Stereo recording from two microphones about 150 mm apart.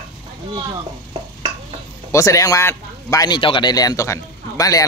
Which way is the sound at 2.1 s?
20° left (ahead or behind).